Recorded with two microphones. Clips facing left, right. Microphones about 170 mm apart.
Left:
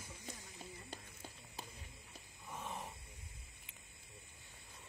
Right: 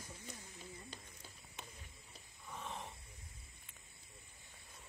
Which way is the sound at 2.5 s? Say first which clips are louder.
Left 1 dB; 10° left (ahead or behind).